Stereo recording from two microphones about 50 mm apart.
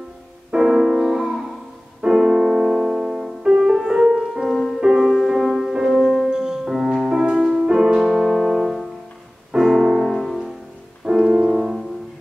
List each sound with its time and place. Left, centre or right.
0.5 s music: centre
2.0 s music: centre
3.4 s music: centre
9.6 s music: centre
10.1 s music: centre
11.1 s music: centre